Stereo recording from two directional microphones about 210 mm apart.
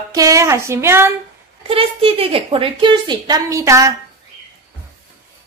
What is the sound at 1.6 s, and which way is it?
A woman's voice, 25° right (ahead or behind).